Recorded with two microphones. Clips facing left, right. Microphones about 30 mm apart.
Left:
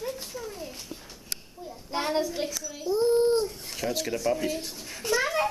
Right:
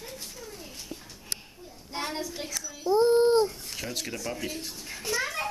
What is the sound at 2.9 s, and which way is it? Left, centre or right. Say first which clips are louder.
Speech: right 2 dB; centre.